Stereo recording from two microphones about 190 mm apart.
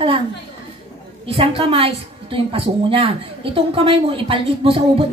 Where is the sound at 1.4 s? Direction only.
30° right (ahead or behind).